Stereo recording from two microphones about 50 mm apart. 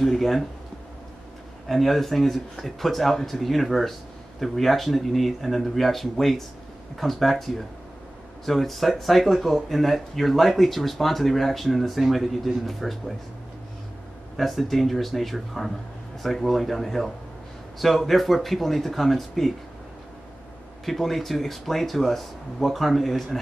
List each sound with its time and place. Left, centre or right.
0.0 s speech: centre
1.7 s speech: centre
14.3 s speech: centre
20.8 s speech: centre